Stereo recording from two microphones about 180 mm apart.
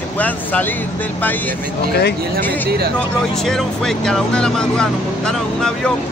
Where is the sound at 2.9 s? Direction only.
5° left (ahead or behind).